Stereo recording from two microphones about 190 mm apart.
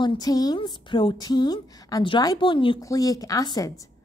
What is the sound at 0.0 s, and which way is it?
A woman's voice, 20° left (ahead or behind).